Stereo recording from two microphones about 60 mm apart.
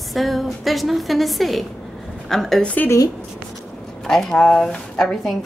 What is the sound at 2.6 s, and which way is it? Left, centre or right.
Speech, left.